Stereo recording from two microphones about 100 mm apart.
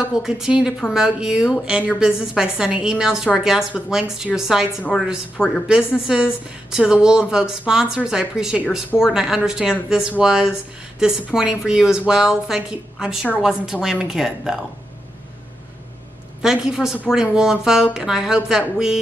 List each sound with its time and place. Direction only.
0.1 s speech: 5° right (ahead or behind)
16.4 s speech: 5° right (ahead or behind)